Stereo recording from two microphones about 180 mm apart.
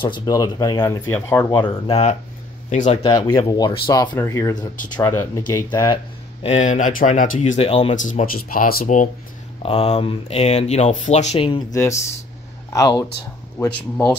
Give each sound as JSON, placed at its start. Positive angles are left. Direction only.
{"t": 0.0, "sound": "speech", "side_deg": 25}
{"t": 1.6, "sound": "speech", "side_deg": 30}
{"t": 3.0, "sound": "speech", "side_deg": 25}
{"t": 5.7, "sound": "speech", "side_deg": 25}
{"t": 6.4, "sound": "speech", "side_deg": 40}
{"t": 7.5, "sound": "speech", "side_deg": 35}
{"t": 9.6, "sound": "speech", "side_deg": 35}
{"t": 11.7, "sound": "speech", "side_deg": 15}